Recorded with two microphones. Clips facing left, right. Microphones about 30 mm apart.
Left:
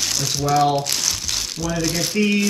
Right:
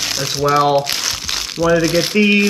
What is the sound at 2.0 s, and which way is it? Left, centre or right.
Speech, right.